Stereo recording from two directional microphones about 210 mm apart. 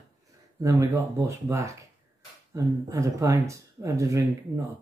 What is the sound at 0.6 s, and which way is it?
Speech, 15° right (ahead or behind).